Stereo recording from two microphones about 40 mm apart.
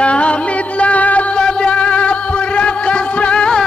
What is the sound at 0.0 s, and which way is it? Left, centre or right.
Music, left.